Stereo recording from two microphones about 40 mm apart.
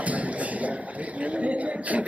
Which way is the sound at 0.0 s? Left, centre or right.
Right.